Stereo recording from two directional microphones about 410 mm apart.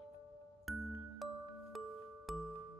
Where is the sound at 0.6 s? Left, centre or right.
Centre.